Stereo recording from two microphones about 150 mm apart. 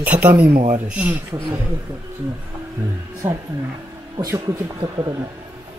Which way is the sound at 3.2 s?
15° right (ahead or behind).